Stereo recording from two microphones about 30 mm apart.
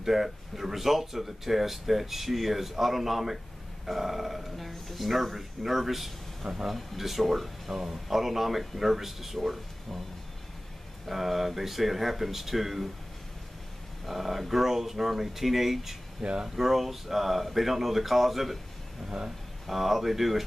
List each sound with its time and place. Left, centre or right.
0.0 s speech: centre
11.1 s speech: centre
14.0 s speech: centre
16.2 s speech: right
16.4 s speech: centre
19.0 s speech: right
19.6 s speech: centre